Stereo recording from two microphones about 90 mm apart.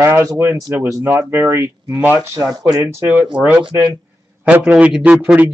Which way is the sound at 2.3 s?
45° right (ahead or behind).